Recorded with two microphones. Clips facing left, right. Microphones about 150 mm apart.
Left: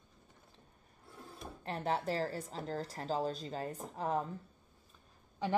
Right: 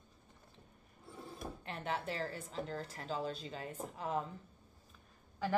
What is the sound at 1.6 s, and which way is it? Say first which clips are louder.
A woman's voice: left 6 dB; 35° left (ahead or behind).